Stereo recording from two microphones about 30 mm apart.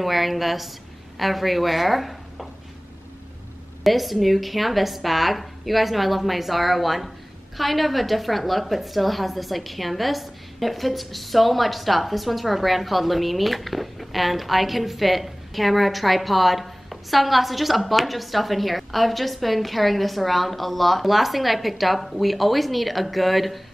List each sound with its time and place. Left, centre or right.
0.0 s a woman's voice: centre
3.8 s a woman's voice: centre